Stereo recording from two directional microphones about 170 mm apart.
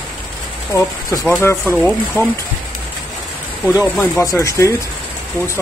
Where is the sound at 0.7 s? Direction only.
20° left (ahead or behind).